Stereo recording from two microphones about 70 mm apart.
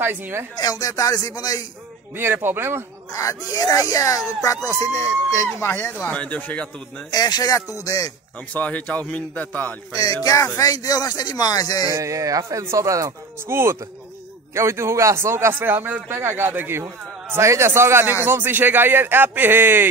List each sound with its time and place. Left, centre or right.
0.0 s a man's voice: right
0.6 s a man's voice: left
2.1 s a man's voice: right
3.1 s speech: left
3.5 s speech: left
5.7 s a man's voice: left
5.9 s a man's voice: centre
7.1 s a man's voice: left
7.6 s speech: left
8.5 s a man's voice: left
9.9 s speech: left
11.9 s speech: right
13.5 s a man's voice: right